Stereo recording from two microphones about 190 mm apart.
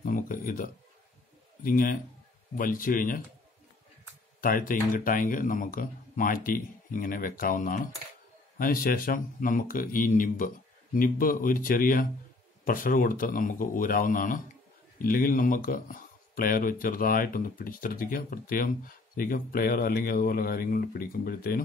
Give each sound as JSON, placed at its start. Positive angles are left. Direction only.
{"t": 0.0, "sound": "speech", "side_deg": 45}
{"t": 4.4, "sound": "speech", "side_deg": 45}